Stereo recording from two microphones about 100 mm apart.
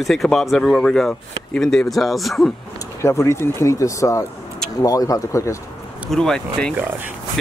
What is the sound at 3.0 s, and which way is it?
Speech, 30° left (ahead or behind).